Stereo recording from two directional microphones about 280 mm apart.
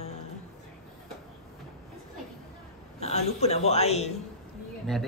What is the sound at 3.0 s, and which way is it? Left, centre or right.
A man's voice, left.